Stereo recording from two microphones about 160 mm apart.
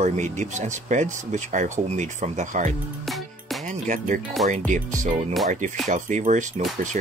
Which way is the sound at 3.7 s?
50° right (ahead or behind).